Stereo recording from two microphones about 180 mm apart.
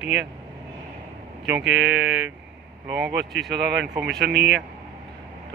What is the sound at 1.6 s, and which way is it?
Speech, 80° right.